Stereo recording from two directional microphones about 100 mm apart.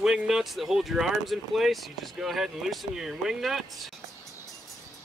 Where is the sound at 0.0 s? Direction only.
5° right (ahead or behind).